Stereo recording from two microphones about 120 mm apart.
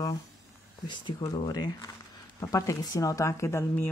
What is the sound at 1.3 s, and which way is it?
Speech, 35° left (ahead or behind).